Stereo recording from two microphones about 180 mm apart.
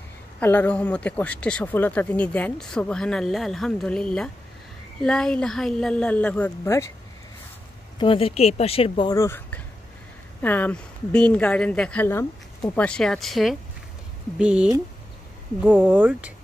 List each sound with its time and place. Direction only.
0.4 s speech: 10° left (ahead or behind)
8.0 s speech: 30° left (ahead or behind)
9.1 s speech: 15° left (ahead or behind); by 14.7 s 5° right (ahead or behind)
15.9 s speech: 10° right (ahead or behind)